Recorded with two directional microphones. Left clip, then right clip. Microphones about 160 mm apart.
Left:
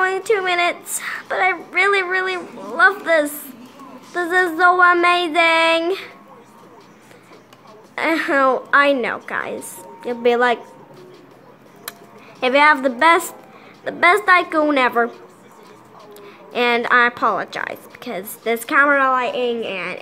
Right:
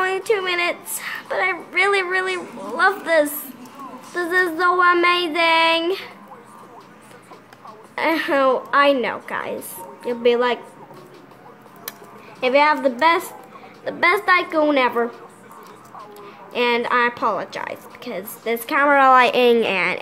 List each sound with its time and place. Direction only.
0.0 s a woman's voice: centre (ahead or behind)
7.9 s a woman's voice: 5° left (ahead or behind)
12.4 s a woman's voice: 10° left (ahead or behind)
16.5 s a woman's voice: 10° left (ahead or behind)
18.9 s a woman's voice: 10° right (ahead or behind)
19.1 s a woman's voice: 25° right (ahead or behind)